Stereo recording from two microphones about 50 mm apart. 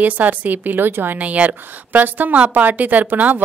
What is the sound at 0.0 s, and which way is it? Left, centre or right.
A woman's voice, right.